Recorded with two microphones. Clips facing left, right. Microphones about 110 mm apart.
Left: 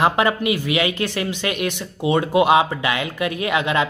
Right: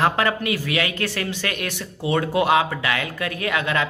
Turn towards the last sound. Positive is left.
turn(degrees=20)  # may be behind; listen again after turning